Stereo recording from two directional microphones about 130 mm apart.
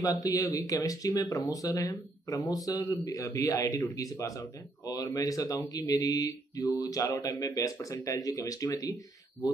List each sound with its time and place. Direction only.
0.0 s speech: 25° left (ahead or behind)